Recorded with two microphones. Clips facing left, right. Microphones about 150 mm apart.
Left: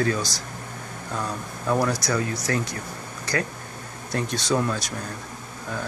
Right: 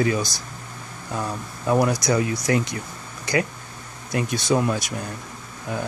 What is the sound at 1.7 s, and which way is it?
Speech, 15° right (ahead or behind).